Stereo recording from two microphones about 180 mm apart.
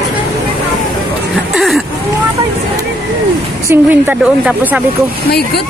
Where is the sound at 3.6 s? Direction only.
10° right (ahead or behind).